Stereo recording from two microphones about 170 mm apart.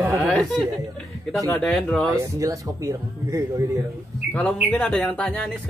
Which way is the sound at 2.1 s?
20° right (ahead or behind).